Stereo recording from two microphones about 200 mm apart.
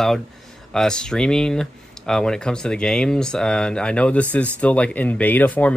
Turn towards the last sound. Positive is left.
turn(degrees=5)  # may be behind; listen again after turning